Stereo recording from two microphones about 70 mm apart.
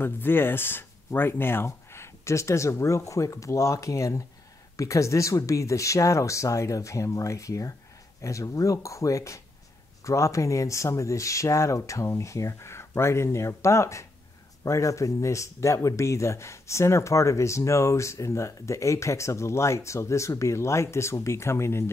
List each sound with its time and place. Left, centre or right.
0.0 s speech: left